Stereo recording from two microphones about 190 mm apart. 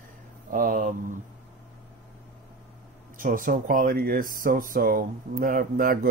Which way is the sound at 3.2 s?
45° right (ahead or behind).